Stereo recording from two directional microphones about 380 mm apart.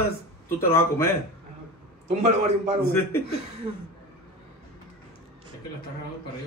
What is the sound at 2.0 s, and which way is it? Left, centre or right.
Speech, centre.